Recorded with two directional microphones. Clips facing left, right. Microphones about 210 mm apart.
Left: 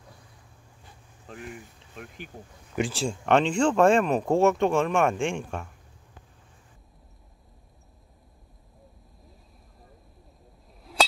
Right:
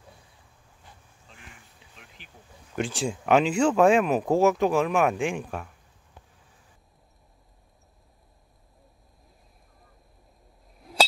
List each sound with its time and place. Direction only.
1.3 s speech: 50° left (ahead or behind)
2.7 s speech: 5° left (ahead or behind)